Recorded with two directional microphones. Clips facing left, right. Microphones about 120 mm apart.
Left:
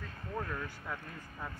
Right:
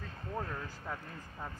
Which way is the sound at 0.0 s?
30° right (ahead or behind).